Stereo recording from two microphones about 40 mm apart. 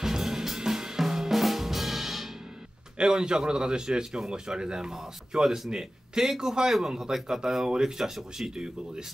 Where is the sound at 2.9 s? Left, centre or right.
Right.